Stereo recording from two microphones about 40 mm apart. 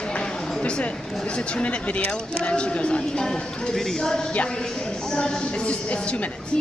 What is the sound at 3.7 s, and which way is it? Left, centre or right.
Speech, centre.